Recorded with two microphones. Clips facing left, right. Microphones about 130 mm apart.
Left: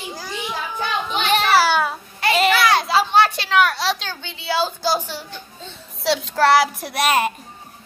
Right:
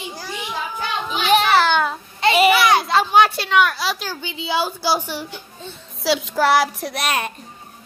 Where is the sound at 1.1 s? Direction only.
Centre (ahead or behind).